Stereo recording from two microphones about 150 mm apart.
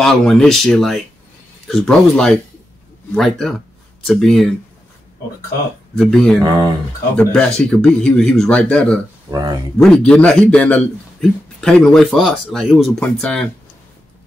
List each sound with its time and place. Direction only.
0.0 s a man's voice: 5° left (ahead or behind)
5.9 s a man's voice: 5° left (ahead or behind)
9.3 s speech: 25° right (ahead or behind)
9.8 s a man's voice: 5° left (ahead or behind)